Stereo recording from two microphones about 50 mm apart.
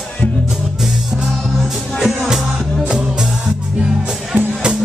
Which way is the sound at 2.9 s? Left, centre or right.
Centre.